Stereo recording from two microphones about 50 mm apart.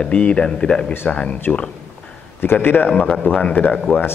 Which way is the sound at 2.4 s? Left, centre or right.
Left.